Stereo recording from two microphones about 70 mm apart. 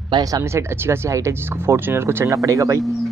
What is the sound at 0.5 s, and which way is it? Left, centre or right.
Speech, right.